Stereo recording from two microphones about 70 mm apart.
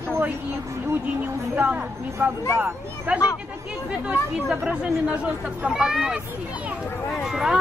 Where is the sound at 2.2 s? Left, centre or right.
Right.